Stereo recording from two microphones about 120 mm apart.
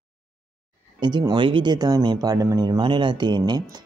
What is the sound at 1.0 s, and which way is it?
Speech, 40° right (ahead or behind).